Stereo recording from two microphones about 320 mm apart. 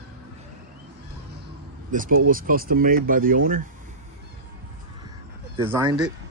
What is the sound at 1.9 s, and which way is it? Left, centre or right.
Speech, right.